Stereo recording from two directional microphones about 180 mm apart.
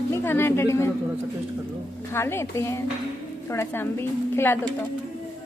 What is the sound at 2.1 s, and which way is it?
A woman's voice, 15° left (ahead or behind).